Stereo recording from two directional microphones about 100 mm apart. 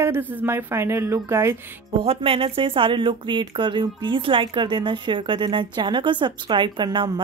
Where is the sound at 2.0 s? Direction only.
75° right (ahead or behind); by 7.2 s 50° right (ahead or behind).